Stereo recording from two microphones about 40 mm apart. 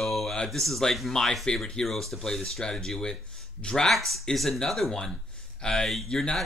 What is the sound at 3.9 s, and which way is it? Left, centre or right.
Speech, centre.